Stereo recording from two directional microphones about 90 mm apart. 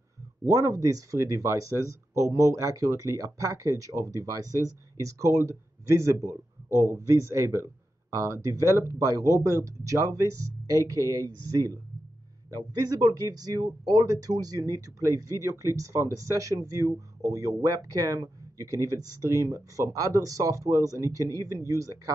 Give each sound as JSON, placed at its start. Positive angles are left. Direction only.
{"t": 0.5, "sound": "speech", "side_deg": -40}